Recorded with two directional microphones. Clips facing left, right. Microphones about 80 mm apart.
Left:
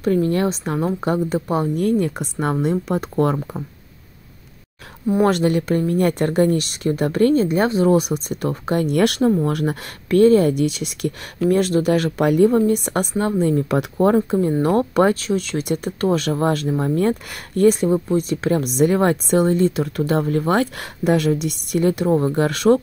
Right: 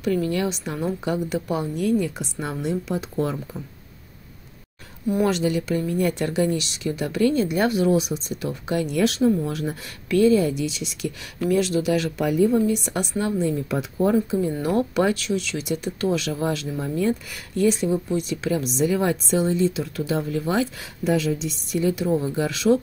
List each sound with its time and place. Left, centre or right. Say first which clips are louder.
0.0 s speech: left 5 dB; left
5.2 s speech: left 5 dB; left
7.9 s speech: left 4 dB; left
10.0 s speech: left 5 dB; left